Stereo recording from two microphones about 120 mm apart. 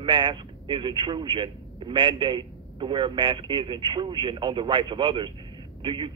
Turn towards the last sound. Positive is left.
turn(degrees=-40)  # may be behind; listen again after turning